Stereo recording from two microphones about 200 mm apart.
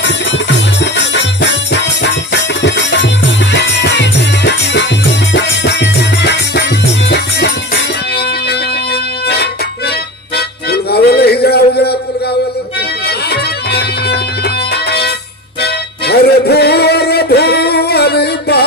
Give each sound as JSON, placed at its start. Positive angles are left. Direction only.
{"t": 0.9, "sound": "music", "side_deg": 60}
{"t": 10.3, "sound": "music", "side_deg": 55}
{"t": 13.3, "sound": "music", "side_deg": 55}